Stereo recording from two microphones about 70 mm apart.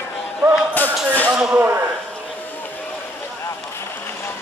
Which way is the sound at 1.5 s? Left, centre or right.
Right.